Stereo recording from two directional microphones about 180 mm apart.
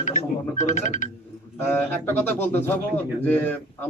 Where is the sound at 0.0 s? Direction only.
45° left (ahead or behind).